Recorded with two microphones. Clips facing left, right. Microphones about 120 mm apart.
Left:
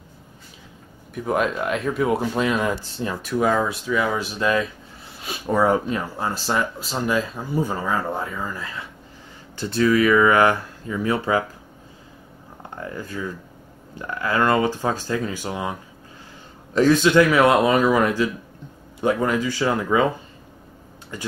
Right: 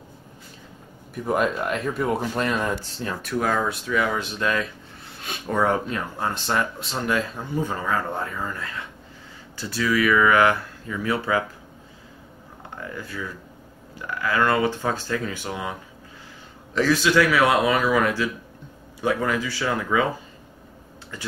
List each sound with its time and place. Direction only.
1.1 s speech: centre (ahead or behind)
3.9 s speech: 15° left (ahead or behind)
5.2 s a sound: 5° left (ahead or behind)
5.9 s speech: 20° left (ahead or behind)
6.3 s speech: 5° left (ahead or behind)
7.6 s speech: 10° left (ahead or behind)
9.8 s speech: 35° left (ahead or behind)
10.0 s speech: 20° left (ahead or behind)
13.1 s speech: 20° left (ahead or behind)
14.4 s speech: 15° left (ahead or behind)
17.0 s speech: 20° left (ahead or behind)